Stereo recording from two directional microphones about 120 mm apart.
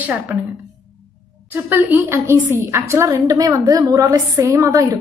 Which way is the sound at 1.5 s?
15° right (ahead or behind).